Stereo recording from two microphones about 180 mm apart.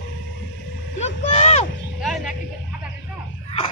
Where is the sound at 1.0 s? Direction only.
35° left (ahead or behind).